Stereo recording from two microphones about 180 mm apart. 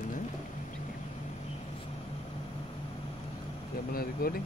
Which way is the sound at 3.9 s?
55° left (ahead or behind).